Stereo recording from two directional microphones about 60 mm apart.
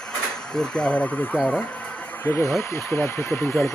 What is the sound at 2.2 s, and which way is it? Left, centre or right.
Speech, left.